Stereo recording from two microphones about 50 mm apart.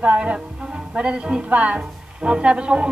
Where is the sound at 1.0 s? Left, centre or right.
Right.